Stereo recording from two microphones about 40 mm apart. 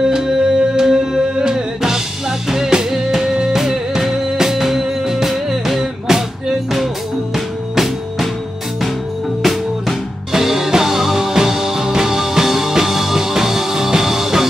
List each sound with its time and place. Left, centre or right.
0.0 s music: centre
7.3 s music: centre
9.4 s music: centre